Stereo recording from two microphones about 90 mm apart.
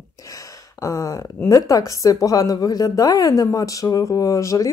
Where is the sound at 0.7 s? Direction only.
35° left (ahead or behind).